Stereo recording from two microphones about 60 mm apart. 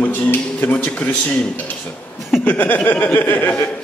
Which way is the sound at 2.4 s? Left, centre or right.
Left.